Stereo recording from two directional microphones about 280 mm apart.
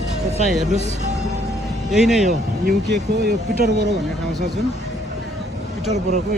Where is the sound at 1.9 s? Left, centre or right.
Centre.